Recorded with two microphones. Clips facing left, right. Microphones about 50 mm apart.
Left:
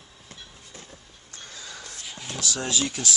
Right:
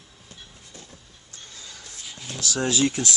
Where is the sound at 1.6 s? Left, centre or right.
Left.